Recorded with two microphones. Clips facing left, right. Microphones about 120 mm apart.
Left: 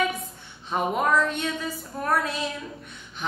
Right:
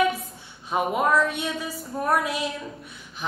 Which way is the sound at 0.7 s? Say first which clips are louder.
Right 1 dB; 10° right (ahead or behind).